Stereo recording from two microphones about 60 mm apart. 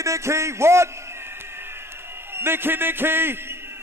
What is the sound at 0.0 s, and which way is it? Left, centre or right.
Speech, right.